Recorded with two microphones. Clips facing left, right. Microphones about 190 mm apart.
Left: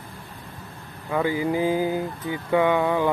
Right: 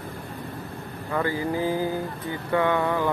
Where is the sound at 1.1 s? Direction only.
15° left (ahead or behind).